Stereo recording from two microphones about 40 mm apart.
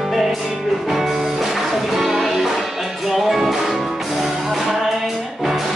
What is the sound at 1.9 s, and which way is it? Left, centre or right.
Music, centre.